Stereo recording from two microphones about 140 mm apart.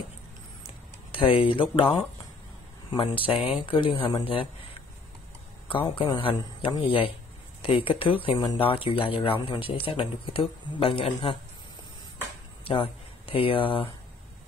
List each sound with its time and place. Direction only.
0.7 s a sound: 40° left (ahead or behind)
2.9 s speech: 35° left (ahead or behind)
5.7 s speech: 35° left (ahead or behind)
12.6 s speech: 40° left (ahead or behind)